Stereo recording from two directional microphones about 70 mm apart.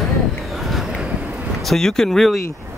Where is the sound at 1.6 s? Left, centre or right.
Centre.